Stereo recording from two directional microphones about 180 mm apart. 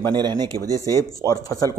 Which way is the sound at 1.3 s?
20° left (ahead or behind).